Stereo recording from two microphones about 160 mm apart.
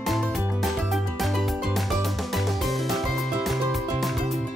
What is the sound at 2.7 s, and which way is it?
Music, centre (ahead or behind).